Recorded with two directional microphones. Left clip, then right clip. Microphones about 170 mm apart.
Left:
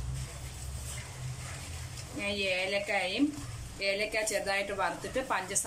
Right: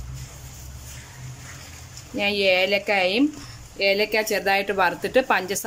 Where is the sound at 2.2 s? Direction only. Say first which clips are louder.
Right 12 dB; 65° right (ahead or behind).